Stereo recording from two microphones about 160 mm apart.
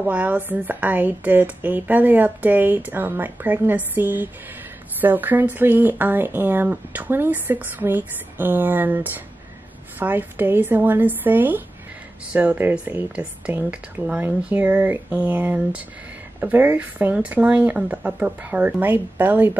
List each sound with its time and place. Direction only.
0.0 s speech: 10° right (ahead or behind)